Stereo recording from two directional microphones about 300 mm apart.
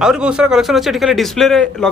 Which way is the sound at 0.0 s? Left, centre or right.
Centre.